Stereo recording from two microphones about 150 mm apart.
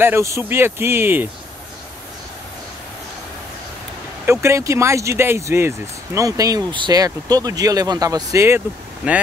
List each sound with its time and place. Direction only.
0.0 s a man's voice: 20° right (ahead or behind)
4.3 s speech: 20° right (ahead or behind)